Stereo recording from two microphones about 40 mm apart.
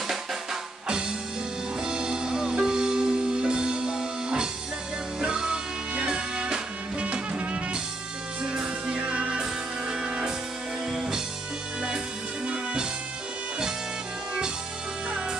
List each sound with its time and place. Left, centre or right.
0.1 s drum: centre
0.8 s music: centre
9.4 s music: centre